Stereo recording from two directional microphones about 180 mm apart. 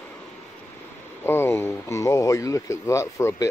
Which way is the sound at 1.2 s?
15° left (ahead or behind).